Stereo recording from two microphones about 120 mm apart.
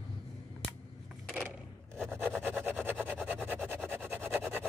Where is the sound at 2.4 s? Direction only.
15° right (ahead or behind).